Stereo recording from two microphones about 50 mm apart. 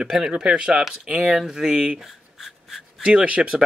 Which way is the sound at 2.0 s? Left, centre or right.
Centre.